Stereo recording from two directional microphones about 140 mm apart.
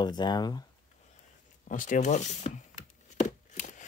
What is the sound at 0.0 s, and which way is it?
Speech, 30° left (ahead or behind).